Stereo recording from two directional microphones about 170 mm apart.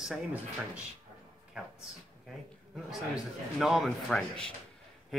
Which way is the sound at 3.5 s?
Centre (ahead or behind).